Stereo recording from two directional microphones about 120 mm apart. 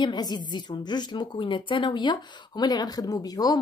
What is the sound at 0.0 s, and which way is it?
A woman's voice, 35° left (ahead or behind).